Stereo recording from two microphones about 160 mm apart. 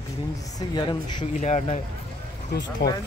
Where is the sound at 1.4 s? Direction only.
45° left (ahead or behind).